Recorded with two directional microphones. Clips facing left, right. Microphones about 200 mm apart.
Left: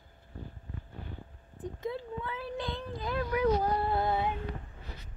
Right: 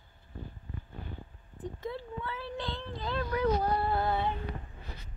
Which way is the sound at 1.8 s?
20° left (ahead or behind).